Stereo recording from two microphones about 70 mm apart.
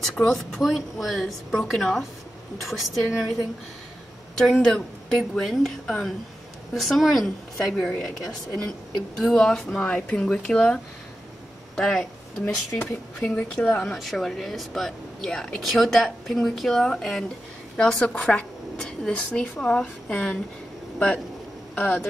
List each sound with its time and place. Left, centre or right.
0.0 s speech: centre
4.4 s speech: centre
13.2 s speech: centre
13.9 s speech: centre
21.7 s speech: centre